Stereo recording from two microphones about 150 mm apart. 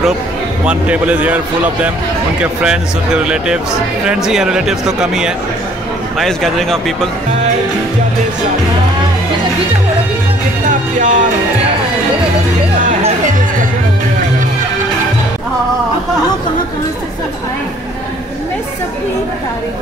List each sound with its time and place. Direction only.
0.7 s a man's voice: 10° right (ahead or behind)
10.7 s music: 55° right (ahead or behind)
13.0 s music: 60° right (ahead or behind)